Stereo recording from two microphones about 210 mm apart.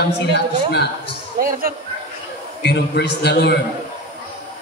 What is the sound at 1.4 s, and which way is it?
Speech, 40° right (ahead or behind).